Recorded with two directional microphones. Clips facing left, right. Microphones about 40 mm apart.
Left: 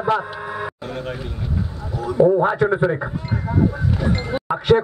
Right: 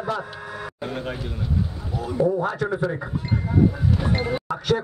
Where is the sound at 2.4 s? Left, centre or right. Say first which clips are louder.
Left 7 dB; left.